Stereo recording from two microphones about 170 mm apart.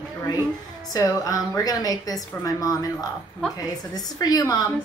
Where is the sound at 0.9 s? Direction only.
20° left (ahead or behind).